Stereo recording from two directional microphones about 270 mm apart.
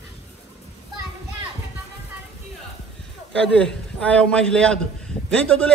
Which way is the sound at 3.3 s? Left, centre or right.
Centre.